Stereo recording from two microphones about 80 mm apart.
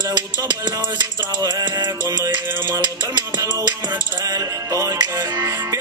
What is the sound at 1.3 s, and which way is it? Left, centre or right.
Music, right.